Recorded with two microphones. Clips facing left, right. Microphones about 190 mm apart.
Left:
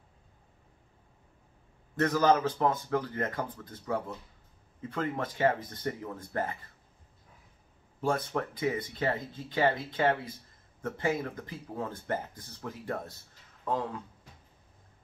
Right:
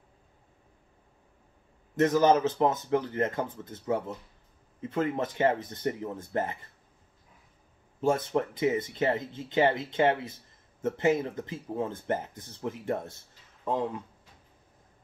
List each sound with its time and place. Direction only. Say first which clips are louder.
2.0 s speech: right 3 dB; 20° right (ahead or behind)
8.0 s speech: right 4 dB; 25° right (ahead or behind)